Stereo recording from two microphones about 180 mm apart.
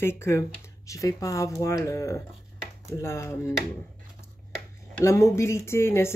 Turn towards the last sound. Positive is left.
turn(degrees=15)  # may be behind; listen again after turning